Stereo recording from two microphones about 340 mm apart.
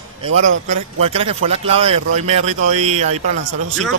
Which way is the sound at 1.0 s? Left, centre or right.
Centre.